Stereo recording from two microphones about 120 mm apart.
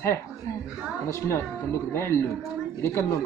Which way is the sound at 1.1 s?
25° left (ahead or behind).